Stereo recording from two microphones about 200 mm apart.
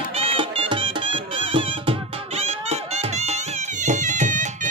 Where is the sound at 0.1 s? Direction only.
25° right (ahead or behind).